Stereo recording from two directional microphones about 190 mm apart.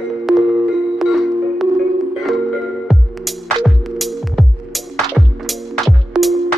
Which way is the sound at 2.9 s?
Centre (ahead or behind).